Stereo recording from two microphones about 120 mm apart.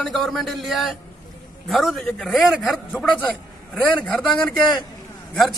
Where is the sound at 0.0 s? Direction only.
Centre (ahead or behind).